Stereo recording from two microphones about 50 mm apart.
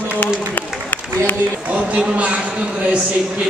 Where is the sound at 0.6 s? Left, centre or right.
Left.